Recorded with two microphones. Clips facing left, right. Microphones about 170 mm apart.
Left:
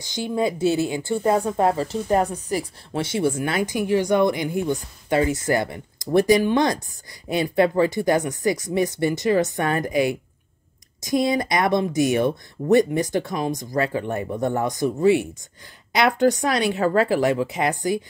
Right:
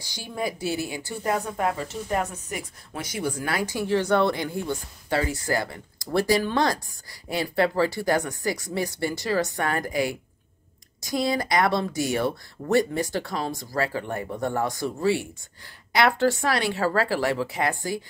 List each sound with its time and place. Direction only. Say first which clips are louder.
0.0 s speech: left 7 dB; 20° left (ahead or behind)